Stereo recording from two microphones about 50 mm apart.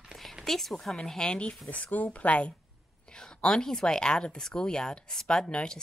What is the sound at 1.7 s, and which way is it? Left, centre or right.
Speech, left.